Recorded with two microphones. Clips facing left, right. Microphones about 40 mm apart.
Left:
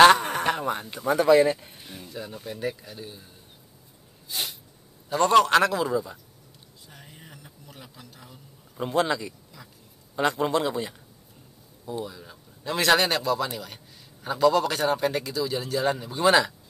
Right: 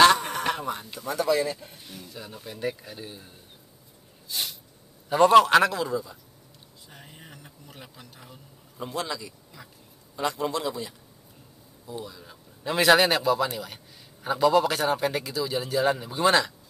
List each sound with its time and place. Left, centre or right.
0.0 s a sound: left
0.7 s a man's voice: left
1.6 s a sound: centre
2.1 s a man's voice: centre
5.1 s a man's voice: centre
6.9 s a sound: centre
8.7 s a man's voice: left
12.0 s speech: centre
12.3 s a man's voice: centre